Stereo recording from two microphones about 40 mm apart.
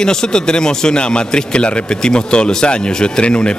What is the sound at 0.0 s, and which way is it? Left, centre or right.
A man's voice, centre.